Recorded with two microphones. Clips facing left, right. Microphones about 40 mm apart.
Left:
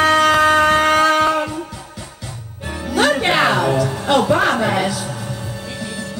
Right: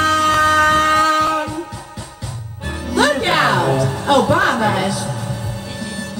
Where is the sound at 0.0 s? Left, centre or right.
Centre.